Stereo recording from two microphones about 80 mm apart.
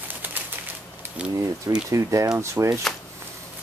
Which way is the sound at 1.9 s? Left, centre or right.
Right.